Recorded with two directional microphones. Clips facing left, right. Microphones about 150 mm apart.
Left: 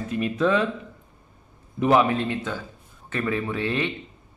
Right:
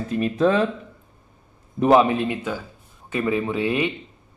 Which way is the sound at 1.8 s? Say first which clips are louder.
Right 3 dB; 35° right (ahead or behind).